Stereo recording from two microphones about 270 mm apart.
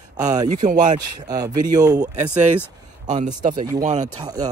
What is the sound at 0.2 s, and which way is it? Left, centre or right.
Speech, centre.